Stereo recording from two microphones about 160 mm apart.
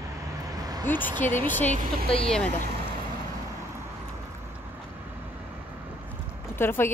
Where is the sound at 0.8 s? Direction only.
10° left (ahead or behind).